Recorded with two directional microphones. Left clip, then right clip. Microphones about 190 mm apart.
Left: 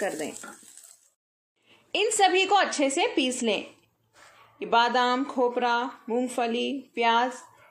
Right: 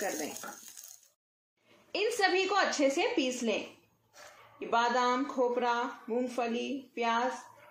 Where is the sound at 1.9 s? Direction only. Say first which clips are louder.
Left 7 dB; 45° left (ahead or behind).